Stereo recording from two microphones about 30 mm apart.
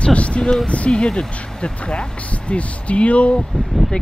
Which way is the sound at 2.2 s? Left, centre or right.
Left.